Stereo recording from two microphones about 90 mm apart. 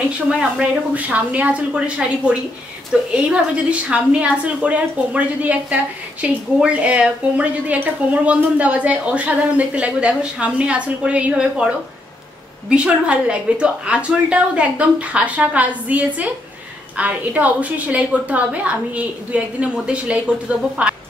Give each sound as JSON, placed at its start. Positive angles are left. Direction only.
{"t": 0.4, "sound": "a woman's voice", "side_deg": -15}